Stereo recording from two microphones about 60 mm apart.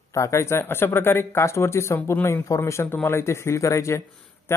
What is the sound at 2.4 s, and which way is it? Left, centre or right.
Speech, left.